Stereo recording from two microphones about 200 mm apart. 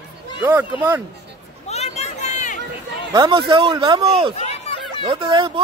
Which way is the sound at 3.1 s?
25° right (ahead or behind).